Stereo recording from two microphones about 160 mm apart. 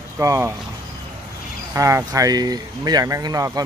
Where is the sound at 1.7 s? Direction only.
20° right (ahead or behind).